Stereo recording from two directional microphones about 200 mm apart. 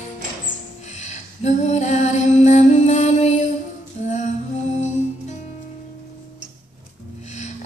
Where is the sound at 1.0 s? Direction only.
35° left (ahead or behind).